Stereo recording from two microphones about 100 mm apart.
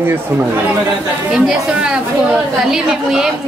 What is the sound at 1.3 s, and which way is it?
A woman's voice, 5° right (ahead or behind).